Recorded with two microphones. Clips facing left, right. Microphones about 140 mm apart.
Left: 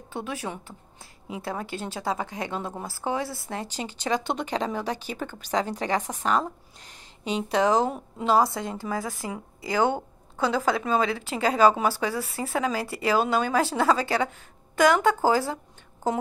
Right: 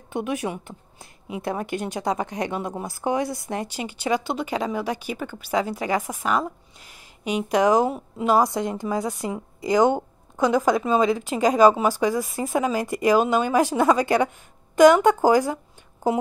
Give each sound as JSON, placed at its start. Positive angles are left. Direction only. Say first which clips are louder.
{"t": 0.1, "sound": "a woman's voice", "louder": "right 6 dB", "side_deg": -15}